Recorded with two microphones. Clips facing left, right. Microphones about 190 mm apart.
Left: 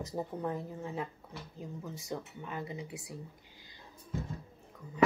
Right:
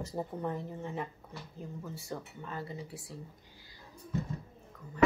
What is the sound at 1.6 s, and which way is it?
Speech, 15° left (ahead or behind).